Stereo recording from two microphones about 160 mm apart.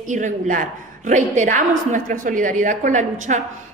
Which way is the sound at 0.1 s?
55° right (ahead or behind).